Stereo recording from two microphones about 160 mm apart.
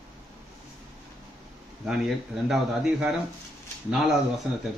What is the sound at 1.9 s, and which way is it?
A man's voice, centre (ahead or behind).